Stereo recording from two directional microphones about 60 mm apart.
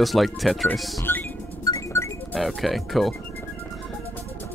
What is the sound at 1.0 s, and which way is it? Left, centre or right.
Music, left.